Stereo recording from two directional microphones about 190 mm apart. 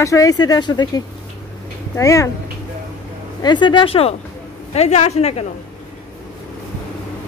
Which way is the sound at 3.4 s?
25° left (ahead or behind).